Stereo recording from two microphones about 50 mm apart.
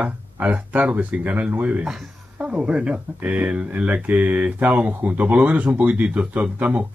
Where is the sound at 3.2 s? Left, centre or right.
Right.